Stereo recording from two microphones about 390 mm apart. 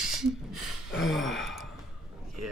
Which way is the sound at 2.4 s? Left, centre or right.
Right.